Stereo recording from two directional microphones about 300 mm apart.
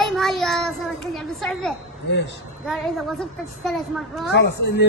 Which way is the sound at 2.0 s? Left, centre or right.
Left.